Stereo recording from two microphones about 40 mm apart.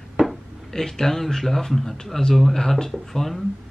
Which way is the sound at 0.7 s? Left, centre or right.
Centre.